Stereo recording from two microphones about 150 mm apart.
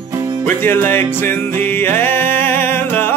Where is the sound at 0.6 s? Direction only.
15° left (ahead or behind).